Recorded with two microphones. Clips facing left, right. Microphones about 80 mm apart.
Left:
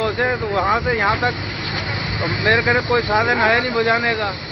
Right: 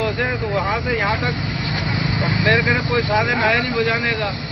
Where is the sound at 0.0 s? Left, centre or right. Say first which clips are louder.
Left 2 dB; left.